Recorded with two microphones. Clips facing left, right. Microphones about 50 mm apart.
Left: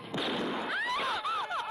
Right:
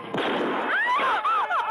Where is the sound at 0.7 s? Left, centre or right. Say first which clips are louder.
Right 11 dB; right.